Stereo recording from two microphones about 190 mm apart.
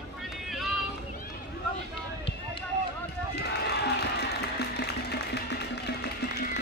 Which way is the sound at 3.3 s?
60° left (ahead or behind).